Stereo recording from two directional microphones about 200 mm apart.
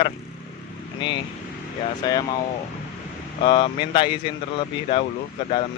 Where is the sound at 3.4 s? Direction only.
25° left (ahead or behind).